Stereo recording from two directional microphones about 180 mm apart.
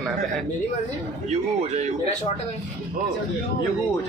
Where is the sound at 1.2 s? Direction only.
40° right (ahead or behind).